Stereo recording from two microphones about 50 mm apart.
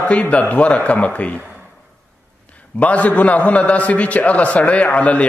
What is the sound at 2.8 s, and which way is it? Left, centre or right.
A man's voice, left.